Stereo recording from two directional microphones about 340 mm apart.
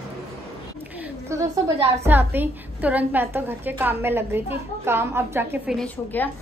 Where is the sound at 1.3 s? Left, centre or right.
Centre.